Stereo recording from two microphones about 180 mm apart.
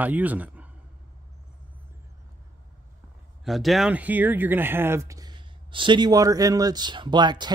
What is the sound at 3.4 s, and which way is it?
Speech, centre (ahead or behind).